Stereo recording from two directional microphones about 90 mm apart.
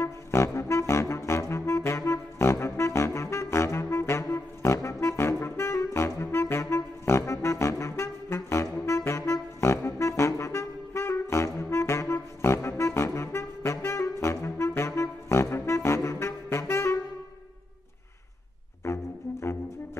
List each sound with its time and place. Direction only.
0.0 s music: 30° left (ahead or behind)